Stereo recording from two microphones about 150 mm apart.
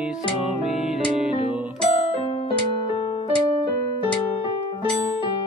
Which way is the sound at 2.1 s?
40° left (ahead or behind).